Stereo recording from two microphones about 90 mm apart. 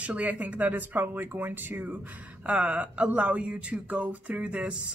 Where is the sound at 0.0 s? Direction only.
15° right (ahead or behind).